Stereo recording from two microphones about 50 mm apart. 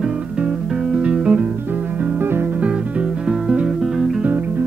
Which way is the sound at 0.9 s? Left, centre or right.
Centre.